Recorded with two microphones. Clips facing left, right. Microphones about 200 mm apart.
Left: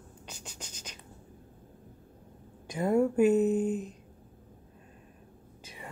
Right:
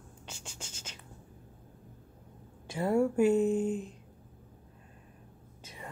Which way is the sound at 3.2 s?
25° right (ahead or behind).